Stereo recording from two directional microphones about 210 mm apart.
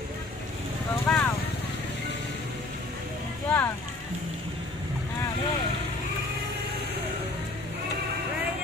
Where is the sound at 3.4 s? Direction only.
10° left (ahead or behind).